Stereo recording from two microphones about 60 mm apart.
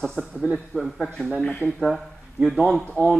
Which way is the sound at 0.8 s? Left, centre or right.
Centre.